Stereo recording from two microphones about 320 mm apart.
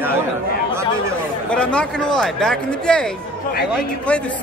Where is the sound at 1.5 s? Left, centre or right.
Centre.